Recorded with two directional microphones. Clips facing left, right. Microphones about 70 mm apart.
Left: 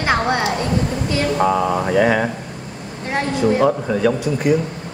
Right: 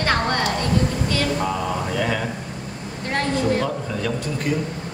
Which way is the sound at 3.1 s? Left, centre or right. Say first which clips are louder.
Left 3 dB; centre.